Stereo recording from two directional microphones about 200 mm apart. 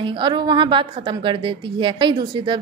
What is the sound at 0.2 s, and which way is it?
A woman's voice, 20° right (ahead or behind).